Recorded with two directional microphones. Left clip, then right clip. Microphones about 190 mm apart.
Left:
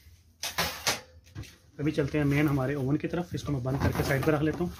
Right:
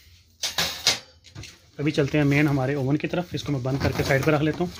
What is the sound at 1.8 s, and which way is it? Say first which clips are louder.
Speech: right 6 dB; 55° right (ahead or behind).